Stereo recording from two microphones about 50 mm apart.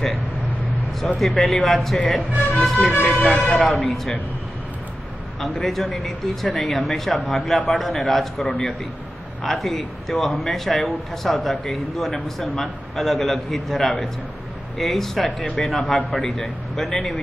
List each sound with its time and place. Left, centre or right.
1.0 s speech: centre
2.9 s speech: left
3.3 s speech: left
3.7 s speech: centre
5.4 s speech: centre